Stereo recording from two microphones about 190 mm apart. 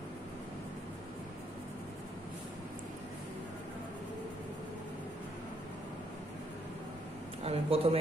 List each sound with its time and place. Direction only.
7.4 s a man's voice: 30° right (ahead or behind)